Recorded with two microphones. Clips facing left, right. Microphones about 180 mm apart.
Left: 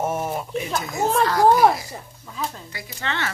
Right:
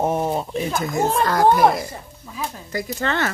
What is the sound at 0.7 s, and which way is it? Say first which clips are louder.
A child's voice: right 1 dB; 50° right (ahead or behind).